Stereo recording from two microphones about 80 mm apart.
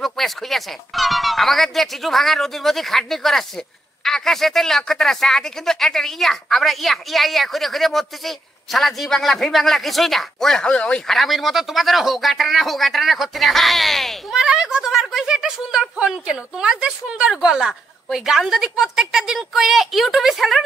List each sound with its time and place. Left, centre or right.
0.0 s speech: centre